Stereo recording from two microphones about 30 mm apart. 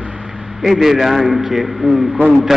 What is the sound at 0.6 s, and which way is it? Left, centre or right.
A man's voice, centre.